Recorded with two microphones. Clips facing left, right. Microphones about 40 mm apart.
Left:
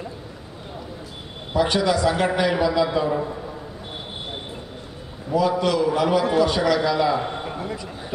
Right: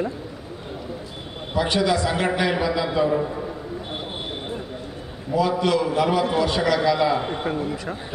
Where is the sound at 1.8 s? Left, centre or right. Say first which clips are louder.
Left 1 dB; centre.